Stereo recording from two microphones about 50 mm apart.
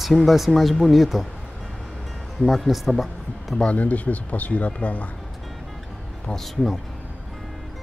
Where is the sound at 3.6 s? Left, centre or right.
Left.